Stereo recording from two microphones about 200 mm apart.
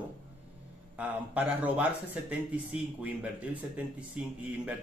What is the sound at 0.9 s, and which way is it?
Speech, 5° right (ahead or behind).